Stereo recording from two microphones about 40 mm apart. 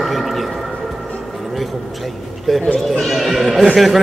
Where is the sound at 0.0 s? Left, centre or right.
Centre.